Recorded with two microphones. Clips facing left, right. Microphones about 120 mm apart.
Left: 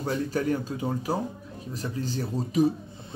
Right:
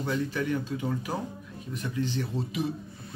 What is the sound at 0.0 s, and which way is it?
Speech, 40° left (ahead or behind).